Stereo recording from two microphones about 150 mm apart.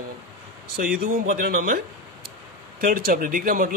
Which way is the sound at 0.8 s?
75° right (ahead or behind).